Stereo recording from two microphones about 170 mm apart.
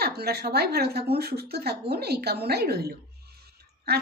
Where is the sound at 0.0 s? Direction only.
70° right (ahead or behind).